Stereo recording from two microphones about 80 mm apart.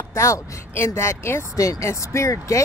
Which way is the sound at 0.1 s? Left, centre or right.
Left.